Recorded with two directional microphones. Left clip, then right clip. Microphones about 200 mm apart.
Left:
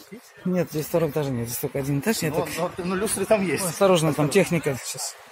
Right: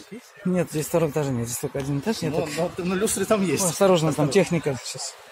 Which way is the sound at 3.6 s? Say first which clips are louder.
Right 1 dB; 20° right (ahead or behind).